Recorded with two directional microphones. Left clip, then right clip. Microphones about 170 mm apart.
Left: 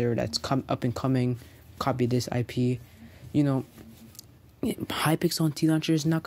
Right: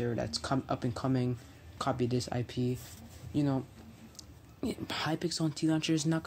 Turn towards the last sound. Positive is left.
turn(degrees=30)  # may be behind; listen again after turning